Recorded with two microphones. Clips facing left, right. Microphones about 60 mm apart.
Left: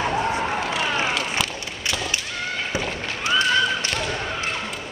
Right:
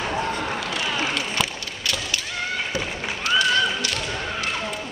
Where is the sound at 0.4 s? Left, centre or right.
Left.